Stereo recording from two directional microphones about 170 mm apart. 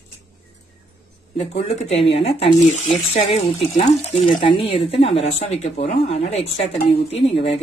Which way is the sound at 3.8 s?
40° left (ahead or behind).